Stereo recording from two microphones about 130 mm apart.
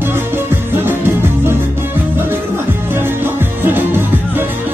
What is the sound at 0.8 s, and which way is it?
Music, 15° right (ahead or behind).